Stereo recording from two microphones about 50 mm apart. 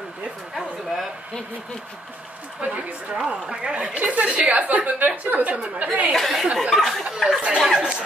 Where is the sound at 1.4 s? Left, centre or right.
Right.